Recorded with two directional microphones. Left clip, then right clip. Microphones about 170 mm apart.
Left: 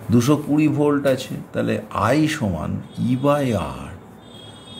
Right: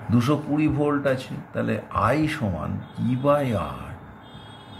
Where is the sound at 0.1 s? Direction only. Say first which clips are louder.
Left 5 dB; 40° left (ahead or behind).